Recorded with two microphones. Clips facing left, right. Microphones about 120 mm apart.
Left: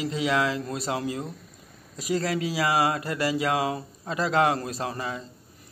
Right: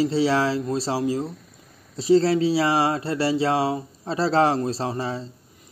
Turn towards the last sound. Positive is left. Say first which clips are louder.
# right 4 dB
turn(degrees=-30)  # may be behind; listen again after turning